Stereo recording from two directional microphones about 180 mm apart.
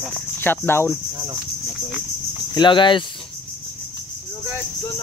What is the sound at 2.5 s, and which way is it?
Speech, 25° left (ahead or behind).